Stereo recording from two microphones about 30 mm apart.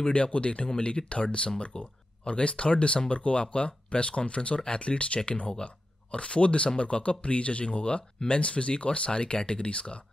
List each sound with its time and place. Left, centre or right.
0.0 s speech: left